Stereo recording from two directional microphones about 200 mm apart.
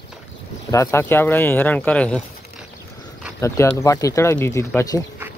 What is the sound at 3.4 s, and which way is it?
Speech, 15° left (ahead or behind).